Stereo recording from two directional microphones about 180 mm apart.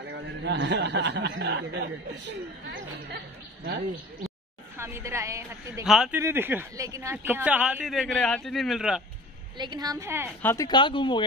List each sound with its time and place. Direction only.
0.0 s speech: 70° right (ahead or behind)
4.7 s speech: 15° right (ahead or behind)
5.9 s speech: 5° right (ahead or behind)
9.6 s a woman's voice: 25° right (ahead or behind)
10.4 s speech: 15° left (ahead or behind)
10.7 s speech: 25° left (ahead or behind)